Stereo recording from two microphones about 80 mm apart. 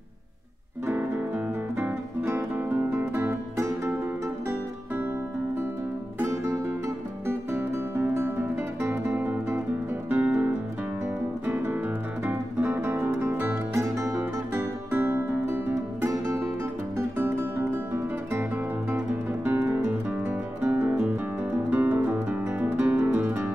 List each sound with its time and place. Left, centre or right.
0.8 s music: right
6.1 s music: right